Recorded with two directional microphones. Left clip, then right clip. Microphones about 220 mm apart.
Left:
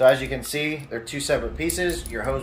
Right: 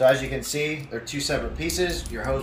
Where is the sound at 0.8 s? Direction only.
30° left (ahead or behind).